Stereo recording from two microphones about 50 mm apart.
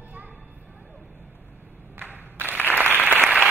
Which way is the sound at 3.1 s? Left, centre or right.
Right.